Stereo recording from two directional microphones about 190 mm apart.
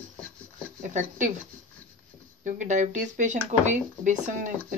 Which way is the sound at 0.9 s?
40° right (ahead or behind).